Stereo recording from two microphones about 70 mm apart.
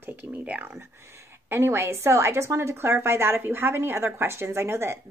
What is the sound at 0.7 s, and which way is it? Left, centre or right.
A woman's voice, right.